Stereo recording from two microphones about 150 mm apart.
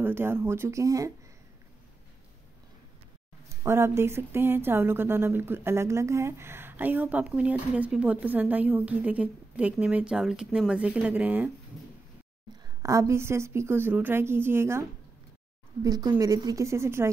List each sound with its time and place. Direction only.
0.0 s speech: 15° right (ahead or behind)
3.6 s speech: 15° right (ahead or behind)
12.8 s a woman's voice: 20° right (ahead or behind)